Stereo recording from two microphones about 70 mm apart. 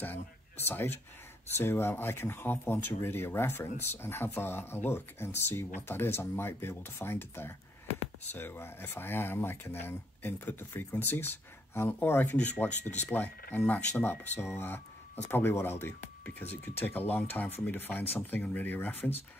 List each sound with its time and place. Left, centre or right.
0.0 s speech: left
12.4 s speech: left